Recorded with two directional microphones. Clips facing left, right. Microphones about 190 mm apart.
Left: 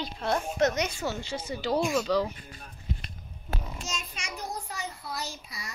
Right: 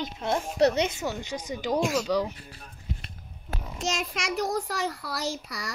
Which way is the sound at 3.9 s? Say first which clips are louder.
Right 13 dB; 90° right.